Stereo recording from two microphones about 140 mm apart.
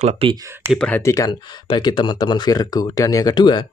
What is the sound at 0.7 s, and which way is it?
Speech, 5° left (ahead or behind).